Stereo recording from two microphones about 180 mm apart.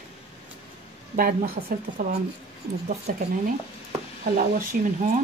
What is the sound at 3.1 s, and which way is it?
Speech, 50° right (ahead or behind).